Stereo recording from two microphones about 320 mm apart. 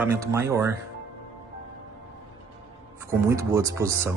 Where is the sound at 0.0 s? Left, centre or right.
Centre.